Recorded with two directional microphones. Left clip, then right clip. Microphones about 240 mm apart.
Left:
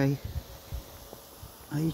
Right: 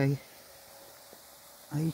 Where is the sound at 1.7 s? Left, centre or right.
Right.